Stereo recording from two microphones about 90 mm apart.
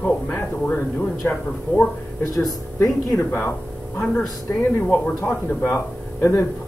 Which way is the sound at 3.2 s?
20° left (ahead or behind).